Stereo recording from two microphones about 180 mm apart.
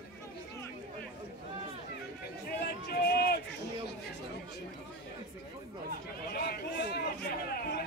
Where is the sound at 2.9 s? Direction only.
60° left (ahead or behind).